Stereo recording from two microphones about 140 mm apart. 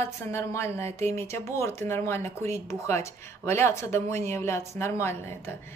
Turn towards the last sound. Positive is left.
turn(degrees=20)  # may be behind; listen again after turning